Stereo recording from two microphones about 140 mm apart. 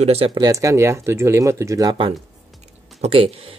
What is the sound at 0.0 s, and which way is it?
Speech, 45° right (ahead or behind).